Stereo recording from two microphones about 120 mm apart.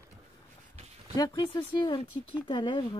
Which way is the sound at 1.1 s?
30° left (ahead or behind).